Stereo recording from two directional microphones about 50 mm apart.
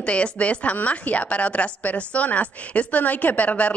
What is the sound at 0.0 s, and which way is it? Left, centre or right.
A woman's voice, left.